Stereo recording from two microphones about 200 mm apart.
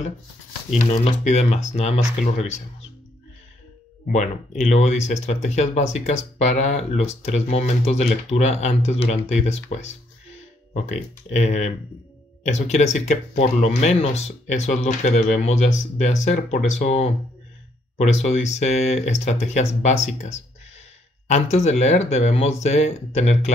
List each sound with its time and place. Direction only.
0.7 s speech: 35° left (ahead or behind)
4.1 s speech: 35° left (ahead or behind)
21.3 s speech: 35° left (ahead or behind)